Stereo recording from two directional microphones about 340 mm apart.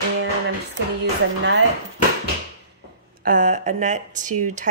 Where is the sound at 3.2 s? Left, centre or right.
Right.